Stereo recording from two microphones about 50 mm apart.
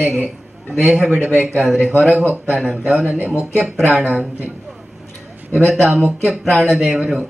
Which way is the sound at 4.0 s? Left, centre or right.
Right.